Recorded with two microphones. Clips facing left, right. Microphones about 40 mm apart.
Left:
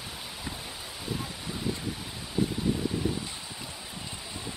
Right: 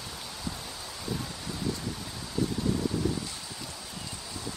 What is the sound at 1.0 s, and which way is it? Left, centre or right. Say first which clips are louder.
Rustling leaves: even; centre.